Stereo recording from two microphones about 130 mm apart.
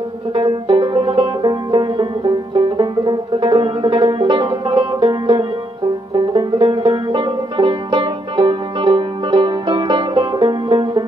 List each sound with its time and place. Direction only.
0.3 s banjo: 40° right (ahead or behind)
6.1 s music: 40° right (ahead or behind)
6.8 s banjo: 35° right (ahead or behind)